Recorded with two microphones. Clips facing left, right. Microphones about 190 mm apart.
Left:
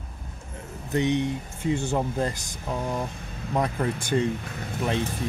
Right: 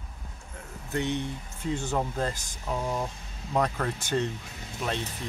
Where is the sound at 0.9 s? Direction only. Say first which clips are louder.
Left 6 dB; 15° left (ahead or behind).